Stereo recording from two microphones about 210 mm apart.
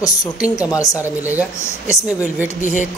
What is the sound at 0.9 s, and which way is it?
Speech, 10° right (ahead or behind).